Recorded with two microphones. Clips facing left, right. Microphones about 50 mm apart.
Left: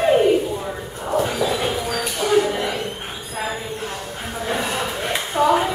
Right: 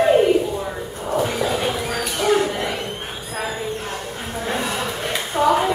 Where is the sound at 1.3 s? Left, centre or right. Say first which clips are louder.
Left 1 dB; right.